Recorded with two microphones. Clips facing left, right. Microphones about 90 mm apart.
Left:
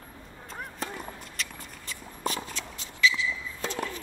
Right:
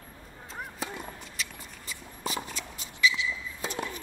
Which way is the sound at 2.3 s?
15° right (ahead or behind).